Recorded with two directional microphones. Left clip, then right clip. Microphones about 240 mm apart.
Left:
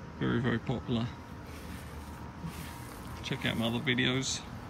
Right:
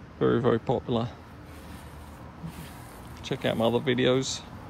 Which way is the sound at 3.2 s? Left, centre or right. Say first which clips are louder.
Right 7 dB; centre.